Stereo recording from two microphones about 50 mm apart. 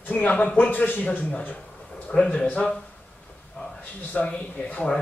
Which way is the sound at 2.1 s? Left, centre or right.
Centre.